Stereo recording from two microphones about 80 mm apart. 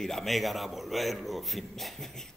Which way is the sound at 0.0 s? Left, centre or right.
Centre.